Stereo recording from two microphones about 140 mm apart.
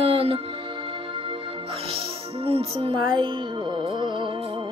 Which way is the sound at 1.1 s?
40° right (ahead or behind).